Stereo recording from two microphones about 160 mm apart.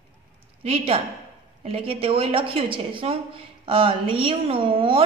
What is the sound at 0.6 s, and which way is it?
A woman's voice, 35° right (ahead or behind).